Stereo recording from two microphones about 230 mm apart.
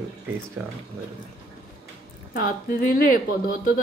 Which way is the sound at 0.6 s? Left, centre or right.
Centre.